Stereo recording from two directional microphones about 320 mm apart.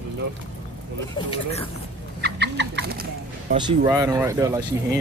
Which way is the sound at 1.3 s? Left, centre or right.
Centre.